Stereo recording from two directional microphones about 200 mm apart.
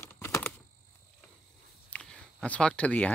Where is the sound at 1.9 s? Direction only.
5° left (ahead or behind).